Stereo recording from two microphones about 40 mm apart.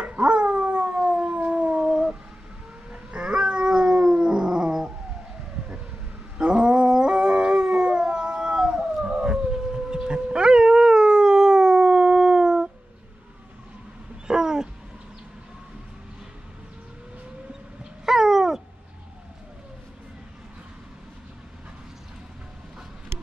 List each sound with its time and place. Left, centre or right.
0.0 s howl: right
1.8 s a sound: centre
2.9 s howl: right
6.3 s howl: right
14.2 s cat: centre
18.0 s dog: centre